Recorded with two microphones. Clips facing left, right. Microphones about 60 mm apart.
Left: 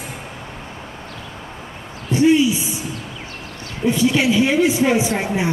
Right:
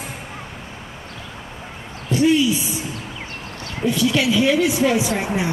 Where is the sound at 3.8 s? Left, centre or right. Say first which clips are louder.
Left 2 dB; left.